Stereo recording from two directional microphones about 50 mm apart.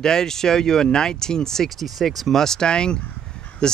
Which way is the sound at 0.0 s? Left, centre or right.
Centre.